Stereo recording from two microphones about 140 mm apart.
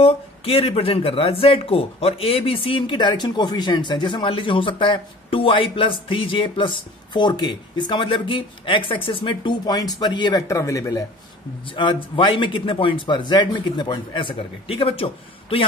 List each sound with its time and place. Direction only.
0.0 s speech: 45° left (ahead or behind); by 11.1 s 25° left (ahead or behind)
11.7 s speech: 35° left (ahead or behind)